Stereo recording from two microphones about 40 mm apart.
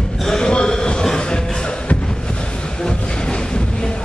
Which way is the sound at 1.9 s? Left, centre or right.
Left.